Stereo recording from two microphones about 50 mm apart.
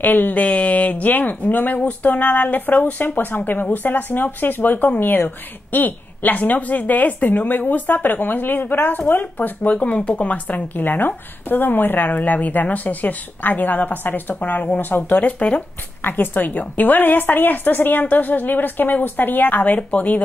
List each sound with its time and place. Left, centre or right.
0.0 s speech: left
15.3 s speech: left
16.0 s speech: left